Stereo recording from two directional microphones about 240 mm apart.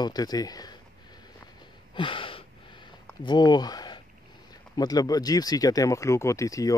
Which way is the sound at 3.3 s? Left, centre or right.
Centre.